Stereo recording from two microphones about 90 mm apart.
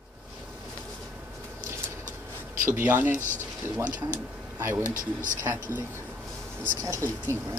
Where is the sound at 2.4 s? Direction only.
25° right (ahead or behind).